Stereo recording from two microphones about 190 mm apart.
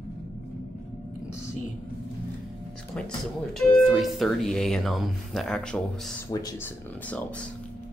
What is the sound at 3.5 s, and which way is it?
Speech, 5° left (ahead or behind).